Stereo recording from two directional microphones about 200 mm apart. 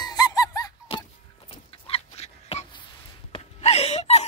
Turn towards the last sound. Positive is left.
turn(degrees=35)  # may be behind; listen again after turning